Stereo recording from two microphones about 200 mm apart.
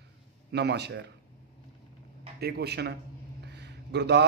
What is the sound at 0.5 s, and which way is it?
Speech, 55° right (ahead or behind).